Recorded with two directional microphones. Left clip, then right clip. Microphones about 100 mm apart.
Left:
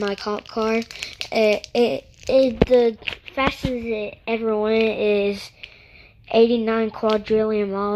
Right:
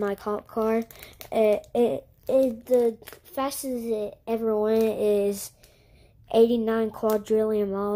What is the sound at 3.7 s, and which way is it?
Speech, 30° right (ahead or behind).